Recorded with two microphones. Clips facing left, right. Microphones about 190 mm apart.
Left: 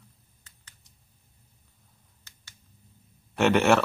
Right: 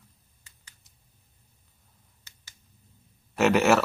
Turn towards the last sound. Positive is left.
turn(degrees=0)  # may be behind; listen again after turning